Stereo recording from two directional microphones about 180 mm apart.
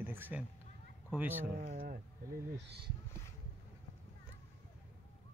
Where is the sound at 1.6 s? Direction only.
50° right (ahead or behind).